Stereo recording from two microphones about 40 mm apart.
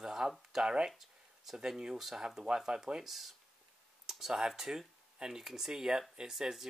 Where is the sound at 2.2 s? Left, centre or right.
Centre.